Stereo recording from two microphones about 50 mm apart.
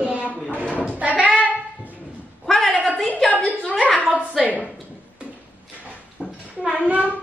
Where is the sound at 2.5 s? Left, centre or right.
Centre.